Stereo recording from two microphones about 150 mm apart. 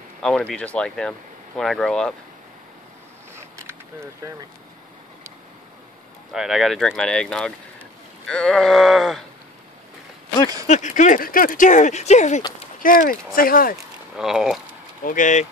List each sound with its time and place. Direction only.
0.2 s speech: 5° left (ahead or behind)
3.3 s a sound: 20° right (ahead or behind)
6.3 s speech: centre (ahead or behind)
10.7 s speech: 55° left (ahead or behind)
12.8 s speech: 70° left (ahead or behind)
14.1 s speech: 5° right (ahead or behind)
15.0 s speech: 60° left (ahead or behind)